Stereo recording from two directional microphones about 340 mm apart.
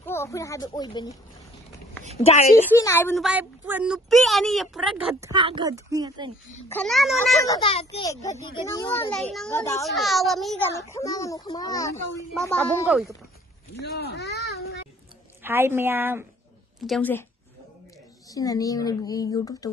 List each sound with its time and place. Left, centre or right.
0.0 s speech: centre
2.1 s speech: centre
2.8 s speech: centre
4.9 s speech: centre
6.7 s a child's voice: centre
13.8 s a child's voice: left
15.4 s speech: centre
18.3 s a child's voice: centre